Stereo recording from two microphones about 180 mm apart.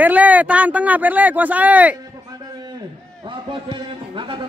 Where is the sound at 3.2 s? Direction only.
25° right (ahead or behind).